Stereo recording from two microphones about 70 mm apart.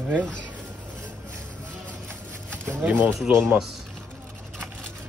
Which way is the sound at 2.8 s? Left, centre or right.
Right.